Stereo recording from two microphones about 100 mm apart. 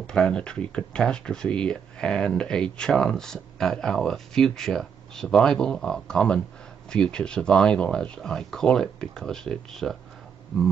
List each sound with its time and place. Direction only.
0.0 s speech: 10° left (ahead or behind)